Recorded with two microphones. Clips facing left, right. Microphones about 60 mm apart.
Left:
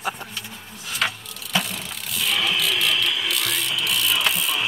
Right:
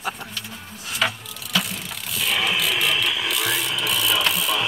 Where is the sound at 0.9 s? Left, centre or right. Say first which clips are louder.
Right 1 dB; centre.